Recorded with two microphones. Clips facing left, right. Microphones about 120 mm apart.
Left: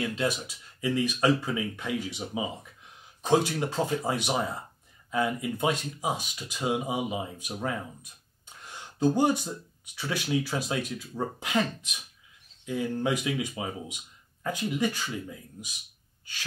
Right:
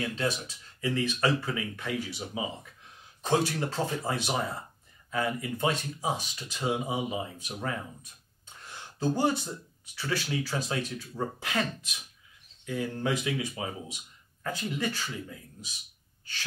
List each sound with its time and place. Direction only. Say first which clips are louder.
0.2 s speech: left 2 dB; 15° left (ahead or behind)
8.7 s a sound: left 5 dB; 15° left (ahead or behind)
9.9 s speech: left 2 dB; 15° left (ahead or behind)
12.6 s speech: left 2 dB; 15° left (ahead or behind)